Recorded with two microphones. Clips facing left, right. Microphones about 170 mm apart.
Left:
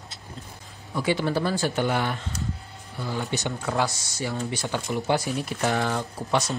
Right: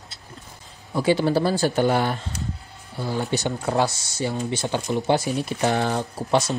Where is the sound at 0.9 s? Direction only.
30° right (ahead or behind).